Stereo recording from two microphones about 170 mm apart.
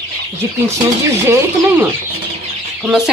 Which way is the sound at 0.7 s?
15° right (ahead or behind).